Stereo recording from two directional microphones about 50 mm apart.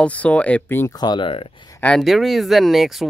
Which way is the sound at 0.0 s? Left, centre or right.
Left.